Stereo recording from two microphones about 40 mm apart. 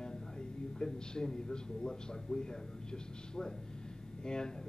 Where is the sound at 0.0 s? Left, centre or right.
Centre.